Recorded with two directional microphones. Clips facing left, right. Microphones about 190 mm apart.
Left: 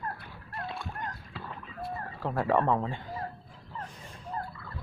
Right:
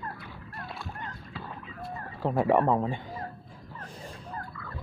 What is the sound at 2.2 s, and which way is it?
Speech, 20° right (ahead or behind).